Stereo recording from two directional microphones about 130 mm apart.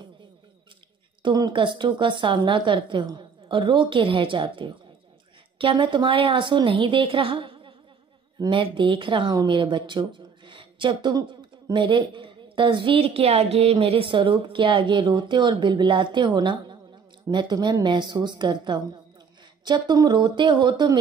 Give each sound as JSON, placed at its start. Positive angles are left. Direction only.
{"t": 1.2, "sound": "a woman's voice", "side_deg": -35}